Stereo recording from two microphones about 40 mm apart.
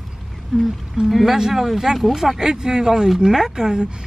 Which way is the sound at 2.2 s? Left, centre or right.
Centre.